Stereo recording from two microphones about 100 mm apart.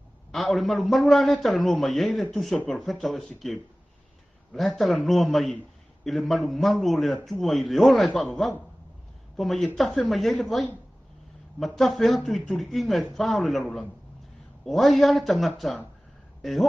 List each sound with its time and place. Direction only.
0.3 s a man's voice: centre (ahead or behind)